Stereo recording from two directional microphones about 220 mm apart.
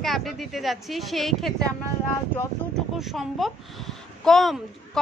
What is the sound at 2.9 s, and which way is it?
A child's voice, centre (ahead or behind).